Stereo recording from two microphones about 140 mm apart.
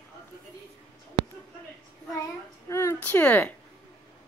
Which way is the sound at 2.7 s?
20° left (ahead or behind).